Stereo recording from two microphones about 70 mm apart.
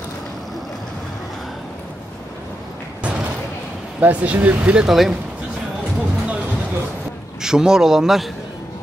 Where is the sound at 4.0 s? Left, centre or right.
Right; by 5.1 s centre.